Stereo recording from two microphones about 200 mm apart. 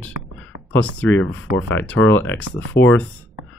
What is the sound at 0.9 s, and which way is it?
Speech, 5° left (ahead or behind).